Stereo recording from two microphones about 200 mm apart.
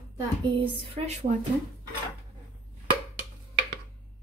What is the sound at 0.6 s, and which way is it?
Speech, 25° right (ahead or behind).